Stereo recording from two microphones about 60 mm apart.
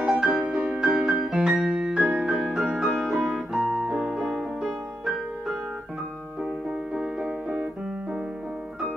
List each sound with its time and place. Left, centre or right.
0.0 s music: centre
0.4 s piano: centre
6.9 s music: centre